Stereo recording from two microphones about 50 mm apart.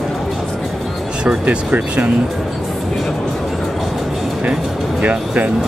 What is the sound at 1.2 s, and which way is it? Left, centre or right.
Speech, right.